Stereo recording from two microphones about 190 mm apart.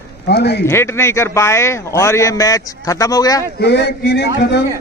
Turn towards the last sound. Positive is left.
turn(degrees=55)  # may be behind; listen again after turning